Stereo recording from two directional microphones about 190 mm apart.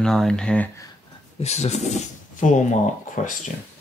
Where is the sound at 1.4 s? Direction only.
35° left (ahead or behind).